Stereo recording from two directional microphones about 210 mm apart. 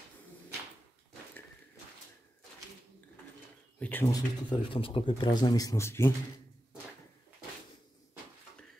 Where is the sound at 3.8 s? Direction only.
10° left (ahead or behind).